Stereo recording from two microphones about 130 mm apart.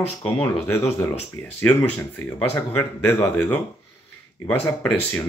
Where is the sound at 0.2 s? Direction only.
10° left (ahead or behind).